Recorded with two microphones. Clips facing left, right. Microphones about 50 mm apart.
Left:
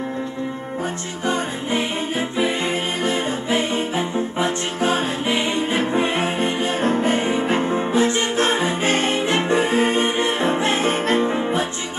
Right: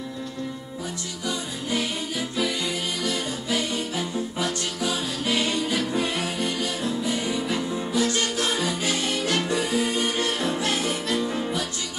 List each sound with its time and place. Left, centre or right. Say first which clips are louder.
1.2 s music: left 8 dB; left